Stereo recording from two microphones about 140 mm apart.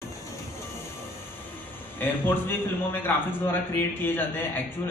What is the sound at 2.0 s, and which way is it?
A man's voice, 15° left (ahead or behind).